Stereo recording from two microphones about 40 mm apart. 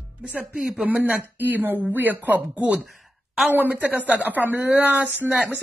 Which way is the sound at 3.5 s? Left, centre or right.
Right.